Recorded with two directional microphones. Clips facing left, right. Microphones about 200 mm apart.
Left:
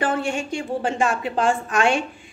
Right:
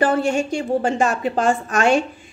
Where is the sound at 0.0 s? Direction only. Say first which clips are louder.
Right 5 dB; 40° right (ahead or behind).